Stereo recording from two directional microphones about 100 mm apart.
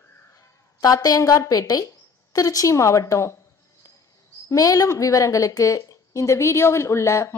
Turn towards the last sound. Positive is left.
turn(degrees=30)  # may be behind; listen again after turning